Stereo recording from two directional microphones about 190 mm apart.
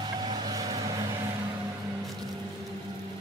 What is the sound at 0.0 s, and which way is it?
Vehicle, 25° right (ahead or behind).